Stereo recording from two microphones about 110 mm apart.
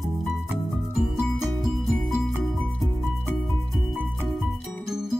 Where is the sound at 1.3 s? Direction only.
Centre (ahead or behind).